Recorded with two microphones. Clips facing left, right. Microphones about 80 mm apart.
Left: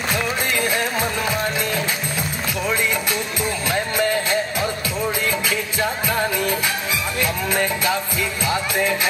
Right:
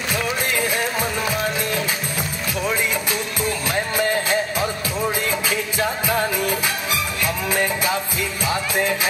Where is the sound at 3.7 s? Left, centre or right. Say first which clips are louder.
Left 1 dB; centre.